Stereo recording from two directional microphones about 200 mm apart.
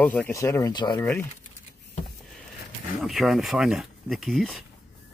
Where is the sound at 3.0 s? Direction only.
Centre (ahead or behind).